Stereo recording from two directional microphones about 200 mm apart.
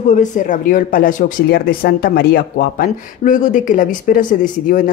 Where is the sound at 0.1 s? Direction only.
40° left (ahead or behind).